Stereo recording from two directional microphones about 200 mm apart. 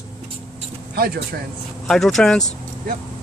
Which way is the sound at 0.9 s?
50° right (ahead or behind).